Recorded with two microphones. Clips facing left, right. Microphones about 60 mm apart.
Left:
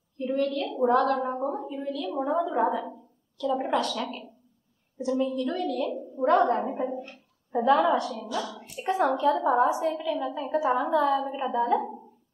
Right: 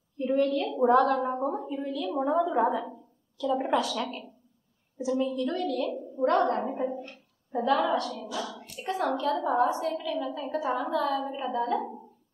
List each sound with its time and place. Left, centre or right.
0.2 s a woman's voice: centre
2.7 s a sound: centre
3.5 s a woman's voice: centre
5.2 s a woman's voice: centre